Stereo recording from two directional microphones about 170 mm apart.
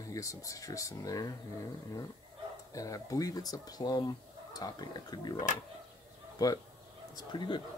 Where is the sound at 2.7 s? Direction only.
20° left (ahead or behind).